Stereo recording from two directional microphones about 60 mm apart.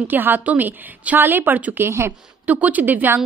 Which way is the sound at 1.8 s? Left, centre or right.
Right.